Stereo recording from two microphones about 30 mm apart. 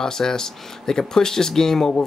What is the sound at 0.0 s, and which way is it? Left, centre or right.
Speech, centre.